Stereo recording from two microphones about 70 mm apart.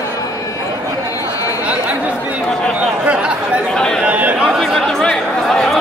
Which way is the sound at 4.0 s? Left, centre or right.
Centre.